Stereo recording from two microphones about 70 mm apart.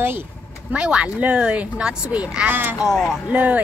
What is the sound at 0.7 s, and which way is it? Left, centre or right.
Speech, centre.